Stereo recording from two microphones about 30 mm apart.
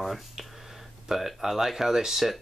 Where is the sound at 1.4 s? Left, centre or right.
Centre.